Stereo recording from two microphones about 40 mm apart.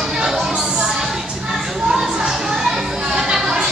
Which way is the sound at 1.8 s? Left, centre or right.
Centre.